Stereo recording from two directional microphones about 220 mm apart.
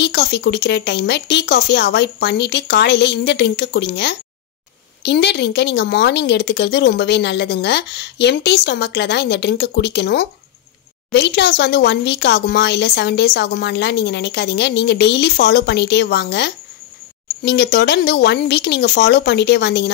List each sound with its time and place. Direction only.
0.0 s speech: 50° left (ahead or behind)